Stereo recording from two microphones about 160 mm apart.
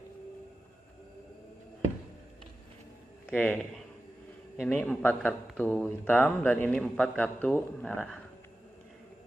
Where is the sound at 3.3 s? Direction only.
10° left (ahead or behind).